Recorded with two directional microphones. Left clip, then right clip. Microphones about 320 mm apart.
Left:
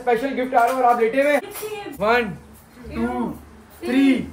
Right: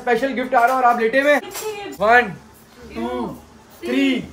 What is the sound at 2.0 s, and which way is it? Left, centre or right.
Speech, centre.